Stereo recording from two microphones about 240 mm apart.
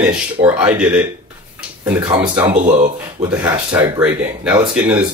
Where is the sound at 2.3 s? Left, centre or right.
Centre.